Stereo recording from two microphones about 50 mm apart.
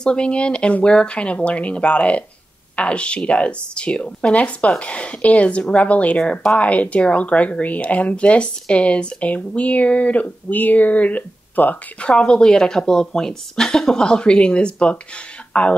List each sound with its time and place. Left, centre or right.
0.0 s a woman's voice: centre; by 11.7 s left
12.0 s a woman's voice: left